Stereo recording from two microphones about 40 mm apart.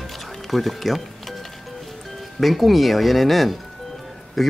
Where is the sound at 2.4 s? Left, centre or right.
Centre.